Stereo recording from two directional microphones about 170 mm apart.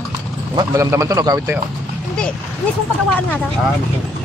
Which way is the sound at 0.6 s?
20° right (ahead or behind).